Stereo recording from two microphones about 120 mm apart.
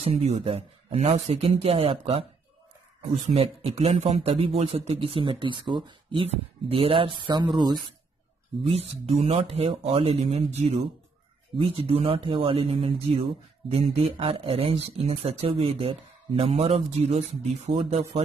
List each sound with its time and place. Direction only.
0.0 s speech: 65° right (ahead or behind); by 6.2 s 40° right (ahead or behind)
6.2 s speech: 55° right (ahead or behind)
8.6 s speech: 60° right (ahead or behind)
11.5 s speech: 55° right (ahead or behind)